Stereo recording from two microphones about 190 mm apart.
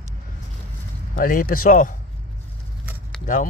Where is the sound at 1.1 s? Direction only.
50° left (ahead or behind).